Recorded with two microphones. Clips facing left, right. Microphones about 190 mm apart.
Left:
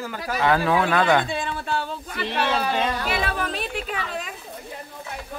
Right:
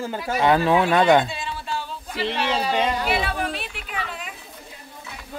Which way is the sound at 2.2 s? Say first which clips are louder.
Even; 15° right (ahead or behind).